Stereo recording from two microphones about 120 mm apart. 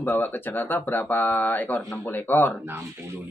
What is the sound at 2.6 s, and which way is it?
Speech, 20° right (ahead or behind).